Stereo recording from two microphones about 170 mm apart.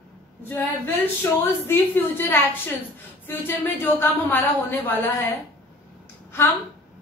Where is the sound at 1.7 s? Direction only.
10° left (ahead or behind).